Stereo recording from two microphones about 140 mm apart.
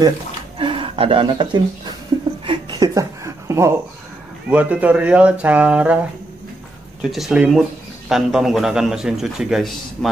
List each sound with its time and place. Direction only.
0.6 s speech: 40° right (ahead or behind)
2.4 s chuckle: 35° right (ahead or behind)
4.5 s speech: 10° right (ahead or behind)
7.0 s a man's voice: centre (ahead or behind)